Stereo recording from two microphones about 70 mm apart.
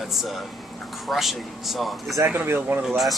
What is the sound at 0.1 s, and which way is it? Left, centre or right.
A man's voice, centre.